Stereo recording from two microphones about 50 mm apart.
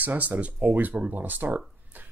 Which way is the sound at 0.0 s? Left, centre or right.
Right.